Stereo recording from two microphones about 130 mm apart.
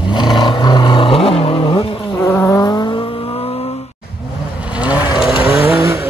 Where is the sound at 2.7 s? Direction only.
40° left (ahead or behind).